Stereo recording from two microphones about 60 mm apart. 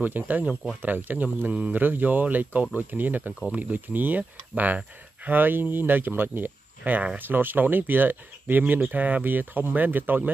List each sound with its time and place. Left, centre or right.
0.0 s speech: right